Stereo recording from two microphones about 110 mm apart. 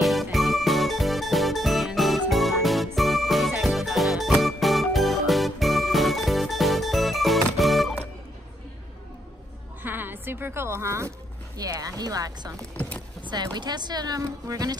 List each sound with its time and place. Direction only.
0.0 s music: centre (ahead or behind)
9.8 s music: 15° right (ahead or behind)
11.5 s speech: 35° right (ahead or behind)
12.5 s speech: 10° left (ahead or behind)
13.2 s speech: 40° right (ahead or behind)